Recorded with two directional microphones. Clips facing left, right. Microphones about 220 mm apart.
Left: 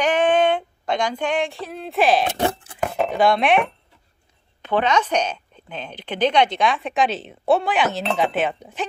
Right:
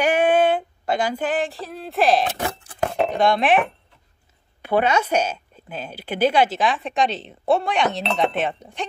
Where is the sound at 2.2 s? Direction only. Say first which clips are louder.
Left 4 dB; 30° left (ahead or behind).